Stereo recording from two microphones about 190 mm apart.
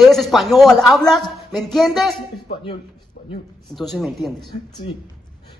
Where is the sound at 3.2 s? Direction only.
35° left (ahead or behind).